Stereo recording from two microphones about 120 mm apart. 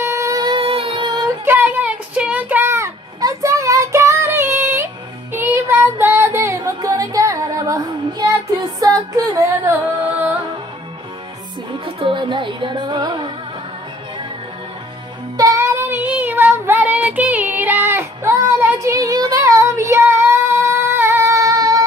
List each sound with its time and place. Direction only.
0.0 s music: 25° right (ahead or behind)
0.4 s music: 45° right (ahead or behind)
1.4 s a sound: 15° right (ahead or behind)
5.3 s music: 20° right (ahead or behind)
10.0 s music: 15° right (ahead or behind)
11.8 s music: 45° right (ahead or behind)
15.3 s child singing: 25° right (ahead or behind)